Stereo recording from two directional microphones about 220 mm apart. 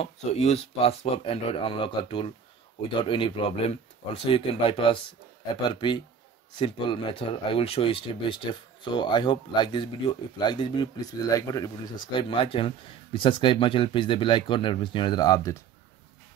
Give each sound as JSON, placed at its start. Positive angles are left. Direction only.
{"t": 0.0, "sound": "speech", "side_deg": 30}